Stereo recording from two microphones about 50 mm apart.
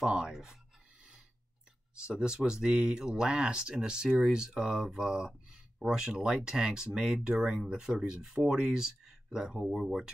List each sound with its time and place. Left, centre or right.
0.2 s speech: centre
2.0 s speech: centre
8.5 s speech: right